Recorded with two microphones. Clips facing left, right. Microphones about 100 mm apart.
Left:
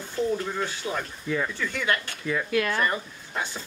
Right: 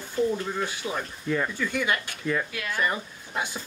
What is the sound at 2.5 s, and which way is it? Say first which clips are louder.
Speech: left 9 dB; 60° left (ahead or behind).